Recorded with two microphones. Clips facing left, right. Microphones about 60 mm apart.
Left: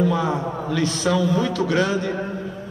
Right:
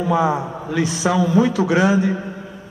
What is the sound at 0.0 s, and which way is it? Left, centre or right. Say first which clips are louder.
A man's voice: right 3 dB; centre.